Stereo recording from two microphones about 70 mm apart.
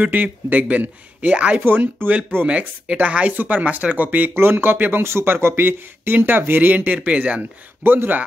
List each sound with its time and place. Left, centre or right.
0.0 s speech: right
1.6 s speech: right
4.3 s speech: right; by 7.4 s centre
7.8 s speech: right